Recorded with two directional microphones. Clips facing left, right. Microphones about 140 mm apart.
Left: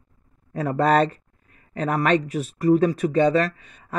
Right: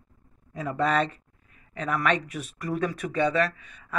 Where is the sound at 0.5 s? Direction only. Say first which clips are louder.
Left 6 dB; 40° left (ahead or behind).